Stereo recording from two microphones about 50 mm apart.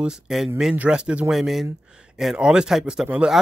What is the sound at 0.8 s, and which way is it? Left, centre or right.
Speech, right.